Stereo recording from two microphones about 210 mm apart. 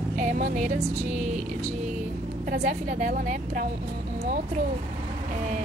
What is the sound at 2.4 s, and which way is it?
A woman's voice, 40° right (ahead or behind).